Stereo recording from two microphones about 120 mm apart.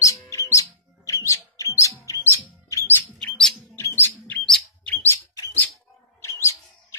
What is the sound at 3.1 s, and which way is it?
Chirp, 5° left (ahead or behind).